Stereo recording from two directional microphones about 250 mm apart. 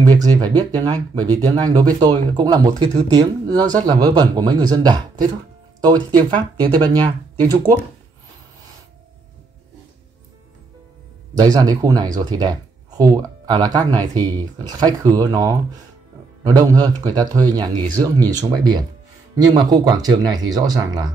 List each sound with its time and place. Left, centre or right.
0.0 s speech: centre
11.3 s speech: centre
19.3 s speech: centre